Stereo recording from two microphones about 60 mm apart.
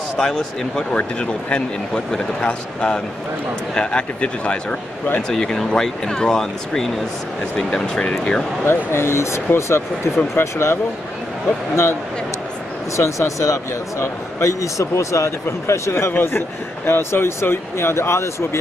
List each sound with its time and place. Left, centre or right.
0.2 s speech: centre
0.9 s speech: centre
5.3 s speech: centre
8.6 s speech: left
16.1 s speech: left